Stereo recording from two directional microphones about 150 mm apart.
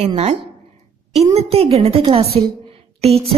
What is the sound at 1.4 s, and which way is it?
A woman's voice, 40° right (ahead or behind).